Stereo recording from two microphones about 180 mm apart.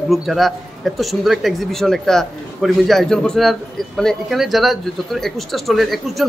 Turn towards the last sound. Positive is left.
turn(degrees=0)  # may be behind; listen again after turning